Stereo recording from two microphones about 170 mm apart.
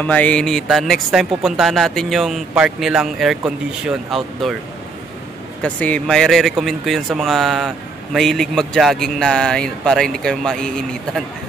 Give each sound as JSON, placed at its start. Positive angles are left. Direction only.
{"t": 0.0, "sound": "speech", "side_deg": 10}
{"t": 5.6, "sound": "speech", "side_deg": 10}